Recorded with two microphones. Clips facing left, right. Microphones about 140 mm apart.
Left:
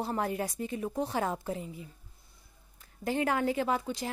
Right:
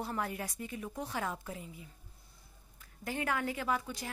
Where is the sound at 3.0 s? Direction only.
30° left (ahead or behind).